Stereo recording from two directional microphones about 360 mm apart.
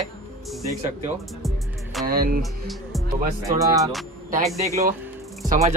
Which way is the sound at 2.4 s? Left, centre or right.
Centre.